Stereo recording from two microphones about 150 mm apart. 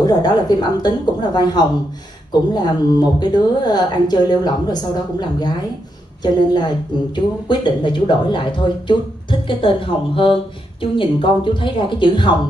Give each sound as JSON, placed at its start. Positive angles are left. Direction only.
{"t": 0.0, "sound": "speech", "side_deg": 25}
{"t": 6.2, "sound": "speech", "side_deg": 30}